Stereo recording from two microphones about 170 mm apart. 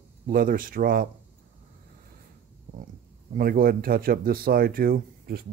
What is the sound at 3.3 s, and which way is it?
Speech, 60° right (ahead or behind).